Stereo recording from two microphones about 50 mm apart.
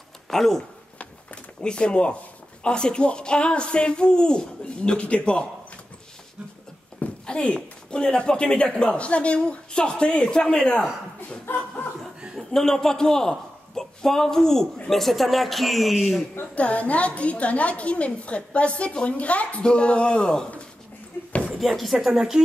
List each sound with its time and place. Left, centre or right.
0.3 s speech: centre
0.9 s a sound: left
2.6 s a woman's voice: centre
7.2 s a woman's voice: centre
11.5 s chuckle: left
12.4 s a man's voice: centre
16.5 s a woman's voice: left
21.5 s a man's voice: centre